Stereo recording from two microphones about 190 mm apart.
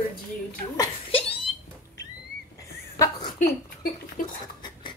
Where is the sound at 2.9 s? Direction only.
20° left (ahead or behind).